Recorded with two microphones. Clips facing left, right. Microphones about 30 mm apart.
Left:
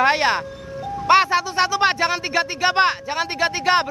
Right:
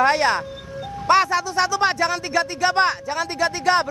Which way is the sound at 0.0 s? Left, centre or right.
Centre.